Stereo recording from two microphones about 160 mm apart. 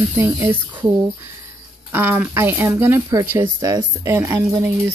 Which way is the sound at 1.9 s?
15° right (ahead or behind).